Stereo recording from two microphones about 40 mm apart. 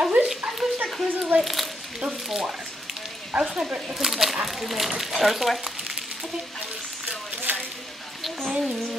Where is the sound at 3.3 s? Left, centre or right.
Right.